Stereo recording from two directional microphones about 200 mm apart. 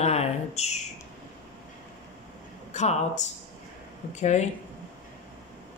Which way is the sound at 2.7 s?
35° left (ahead or behind).